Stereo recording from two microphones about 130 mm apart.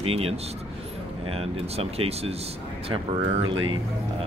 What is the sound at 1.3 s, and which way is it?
Speech, 50° right (ahead or behind).